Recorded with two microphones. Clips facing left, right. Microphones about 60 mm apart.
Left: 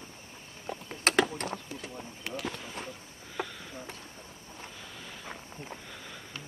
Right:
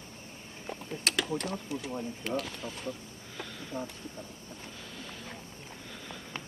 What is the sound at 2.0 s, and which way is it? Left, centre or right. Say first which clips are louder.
Speech: right 6 dB; centre.